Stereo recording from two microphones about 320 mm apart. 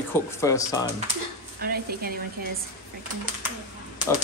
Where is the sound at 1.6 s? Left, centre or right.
Right.